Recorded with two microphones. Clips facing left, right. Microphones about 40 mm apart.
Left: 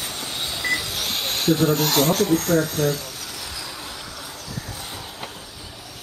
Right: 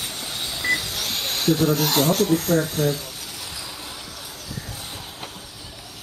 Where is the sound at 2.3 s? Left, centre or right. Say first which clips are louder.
Left 1 dB; centre.